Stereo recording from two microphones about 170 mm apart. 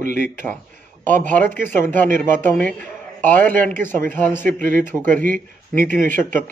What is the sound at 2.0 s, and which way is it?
Speech, 50° right (ahead or behind).